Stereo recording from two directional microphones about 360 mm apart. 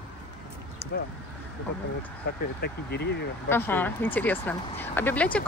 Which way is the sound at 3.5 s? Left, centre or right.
Centre.